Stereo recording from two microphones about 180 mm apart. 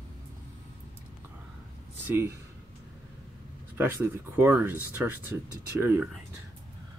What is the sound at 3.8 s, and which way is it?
Speech, 10° right (ahead or behind).